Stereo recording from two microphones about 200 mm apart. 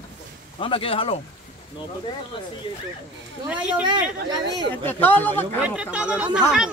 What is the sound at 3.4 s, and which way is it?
Speech, 5° right (ahead or behind).